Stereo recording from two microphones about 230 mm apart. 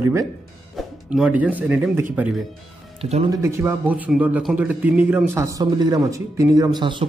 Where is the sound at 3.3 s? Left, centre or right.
Centre.